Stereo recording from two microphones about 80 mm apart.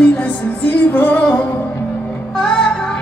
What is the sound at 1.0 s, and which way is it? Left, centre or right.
Music, centre.